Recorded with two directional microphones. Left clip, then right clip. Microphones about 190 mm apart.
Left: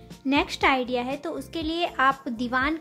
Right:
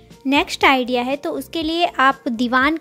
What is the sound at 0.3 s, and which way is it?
A woman's voice, 40° right (ahead or behind).